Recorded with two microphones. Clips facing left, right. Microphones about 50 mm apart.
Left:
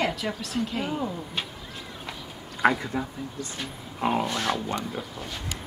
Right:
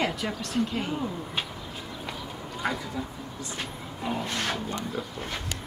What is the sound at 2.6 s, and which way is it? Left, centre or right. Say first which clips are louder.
Speech: left 8 dB; left.